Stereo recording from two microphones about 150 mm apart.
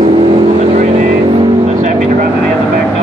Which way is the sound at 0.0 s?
40° right (ahead or behind).